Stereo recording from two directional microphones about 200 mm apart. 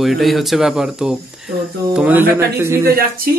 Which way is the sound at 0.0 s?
Centre (ahead or behind).